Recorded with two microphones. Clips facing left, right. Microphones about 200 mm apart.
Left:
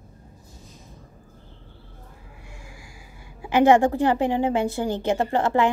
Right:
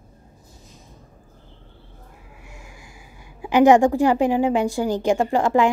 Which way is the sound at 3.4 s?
15° right (ahead or behind).